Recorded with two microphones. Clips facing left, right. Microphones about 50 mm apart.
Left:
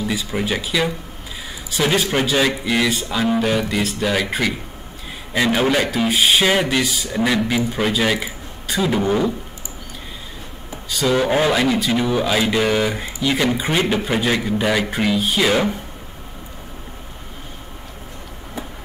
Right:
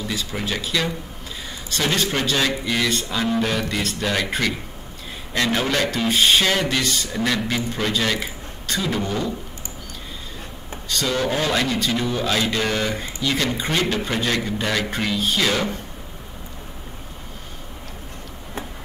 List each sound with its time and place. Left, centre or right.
0.0 s a man's voice: centre
10.9 s a man's voice: centre